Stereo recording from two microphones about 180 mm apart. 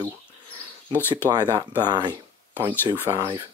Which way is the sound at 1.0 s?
10° left (ahead or behind).